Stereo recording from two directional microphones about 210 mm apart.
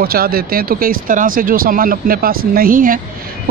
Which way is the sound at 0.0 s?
45° right (ahead or behind).